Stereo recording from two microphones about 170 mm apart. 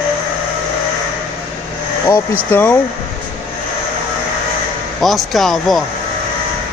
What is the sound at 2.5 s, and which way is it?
Speech, 15° left (ahead or behind).